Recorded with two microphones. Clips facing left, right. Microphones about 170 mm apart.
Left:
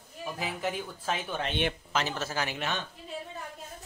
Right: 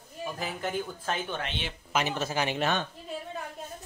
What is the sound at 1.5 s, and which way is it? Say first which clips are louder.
Speech: left 7 dB; 55° left (ahead or behind).